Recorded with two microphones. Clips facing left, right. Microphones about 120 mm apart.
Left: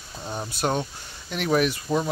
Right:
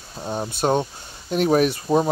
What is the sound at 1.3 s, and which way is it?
Speech, 35° right (ahead or behind).